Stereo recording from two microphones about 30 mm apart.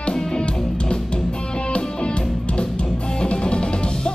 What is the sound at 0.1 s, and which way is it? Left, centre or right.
Music, left.